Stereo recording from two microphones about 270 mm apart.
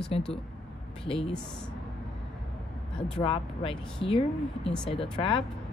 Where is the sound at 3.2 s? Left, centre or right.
Centre.